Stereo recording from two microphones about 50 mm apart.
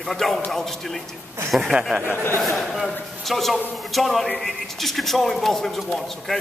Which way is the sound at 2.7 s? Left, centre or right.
Centre.